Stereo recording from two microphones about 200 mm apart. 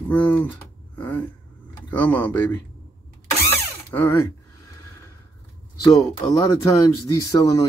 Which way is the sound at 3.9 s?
15° left (ahead or behind).